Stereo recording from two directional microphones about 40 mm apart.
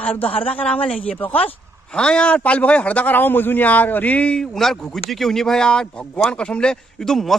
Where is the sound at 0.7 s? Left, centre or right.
Left.